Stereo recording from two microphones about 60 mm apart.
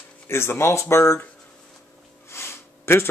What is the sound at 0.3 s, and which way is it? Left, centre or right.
Speech, left.